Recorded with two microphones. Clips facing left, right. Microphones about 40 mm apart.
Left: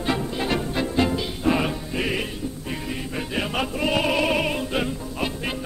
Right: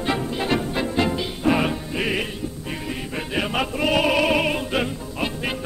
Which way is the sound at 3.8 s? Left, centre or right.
Right.